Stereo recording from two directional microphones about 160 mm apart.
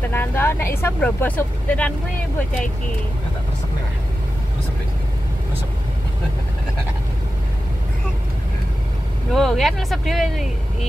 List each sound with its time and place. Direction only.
0.1 s speech: 15° left (ahead or behind)
9.3 s speech: centre (ahead or behind)